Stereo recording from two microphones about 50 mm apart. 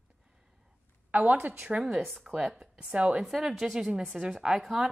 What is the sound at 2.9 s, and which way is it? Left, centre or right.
Speech, right.